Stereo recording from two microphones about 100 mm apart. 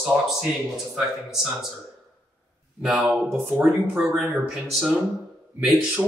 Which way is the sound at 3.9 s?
5° right (ahead or behind).